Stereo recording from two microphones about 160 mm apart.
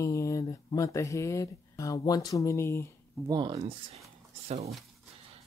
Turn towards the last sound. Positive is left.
turn(degrees=-45)  # may be behind; listen again after turning